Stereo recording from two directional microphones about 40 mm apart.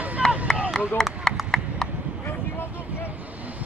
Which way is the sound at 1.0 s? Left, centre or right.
Centre.